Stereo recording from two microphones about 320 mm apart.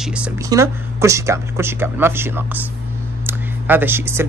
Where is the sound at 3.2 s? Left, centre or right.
Centre.